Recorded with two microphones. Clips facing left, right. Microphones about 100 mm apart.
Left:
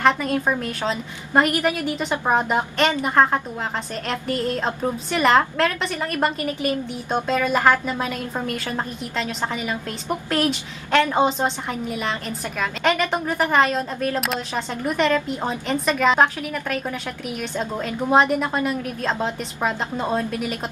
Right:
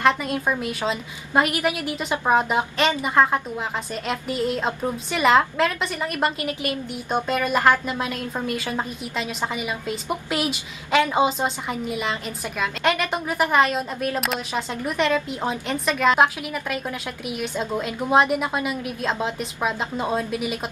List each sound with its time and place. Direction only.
0.0 s a woman's voice: centre (ahead or behind)